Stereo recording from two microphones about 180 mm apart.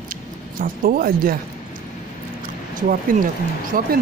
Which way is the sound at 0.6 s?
55° right (ahead or behind).